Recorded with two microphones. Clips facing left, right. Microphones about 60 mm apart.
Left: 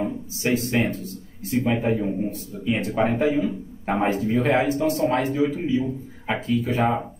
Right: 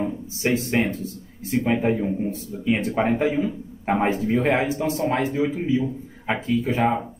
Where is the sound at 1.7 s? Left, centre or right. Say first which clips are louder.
Right 2 dB; centre.